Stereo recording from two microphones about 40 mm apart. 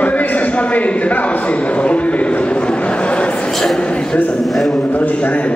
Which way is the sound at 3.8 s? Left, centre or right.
Left.